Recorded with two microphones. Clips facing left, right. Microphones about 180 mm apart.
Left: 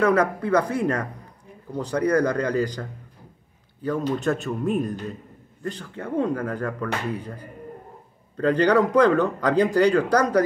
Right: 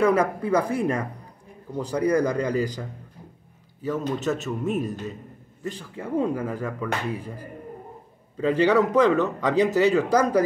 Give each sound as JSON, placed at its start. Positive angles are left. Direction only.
{"t": 0.0, "sound": "speech", "side_deg": -10}